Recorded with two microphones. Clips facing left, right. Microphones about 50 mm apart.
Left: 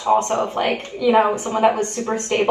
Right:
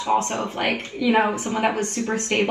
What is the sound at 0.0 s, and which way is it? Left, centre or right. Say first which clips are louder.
Speech: left 4 dB; left.